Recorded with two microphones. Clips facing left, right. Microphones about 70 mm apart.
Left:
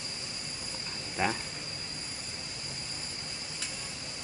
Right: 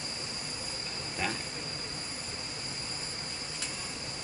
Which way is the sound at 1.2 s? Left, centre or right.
Left.